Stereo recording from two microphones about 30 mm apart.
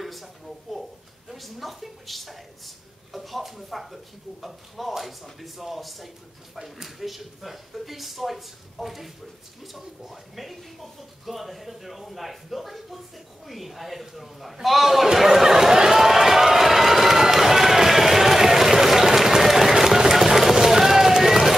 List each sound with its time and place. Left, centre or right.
0.0 s a sound: centre
1.3 s a woman's voice: centre
15.1 s run: centre